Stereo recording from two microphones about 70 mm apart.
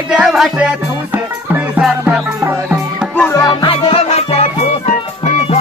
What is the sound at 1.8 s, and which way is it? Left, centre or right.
Music, centre.